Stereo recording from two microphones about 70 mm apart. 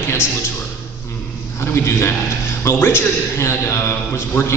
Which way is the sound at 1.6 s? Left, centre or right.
Left.